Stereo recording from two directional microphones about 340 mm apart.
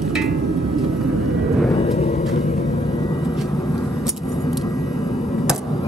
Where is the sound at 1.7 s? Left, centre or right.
Centre.